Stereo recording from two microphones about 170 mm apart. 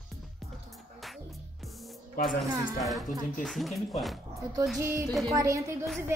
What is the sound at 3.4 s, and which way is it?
Music, centre (ahead or behind).